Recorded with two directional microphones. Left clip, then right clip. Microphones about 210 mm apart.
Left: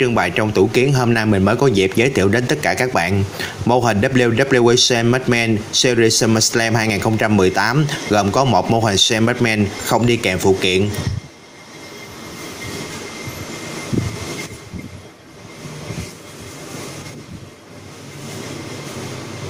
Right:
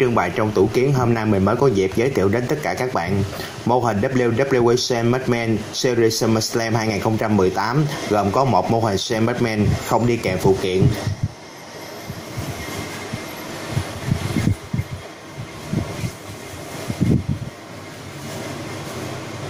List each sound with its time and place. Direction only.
0.0 s speech: 20° left (ahead or behind)